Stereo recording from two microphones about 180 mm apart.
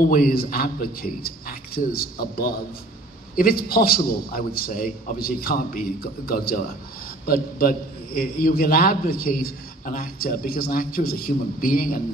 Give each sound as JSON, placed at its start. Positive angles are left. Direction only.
{"t": 0.0, "sound": "a man's voice", "side_deg": 50}